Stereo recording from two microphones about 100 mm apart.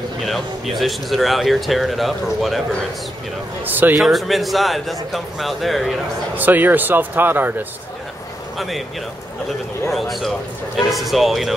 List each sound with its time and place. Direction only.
0.2 s speech: centre (ahead or behind)
3.6 s speech: 20° right (ahead or behind)
4.0 s speech: centre (ahead or behind)
6.3 s speech: 20° right (ahead or behind)
8.5 s speech: centre (ahead or behind)
9.9 s speech: centre (ahead or behind)